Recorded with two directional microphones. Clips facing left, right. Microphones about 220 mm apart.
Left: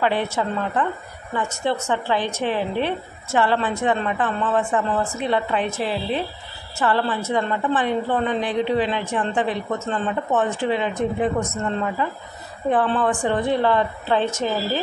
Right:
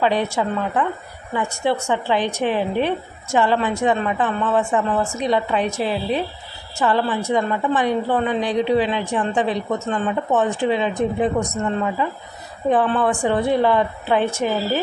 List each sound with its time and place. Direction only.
0.0 s speech: 15° right (ahead or behind)